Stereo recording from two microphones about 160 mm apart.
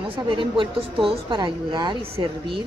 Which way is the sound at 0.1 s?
30° right (ahead or behind).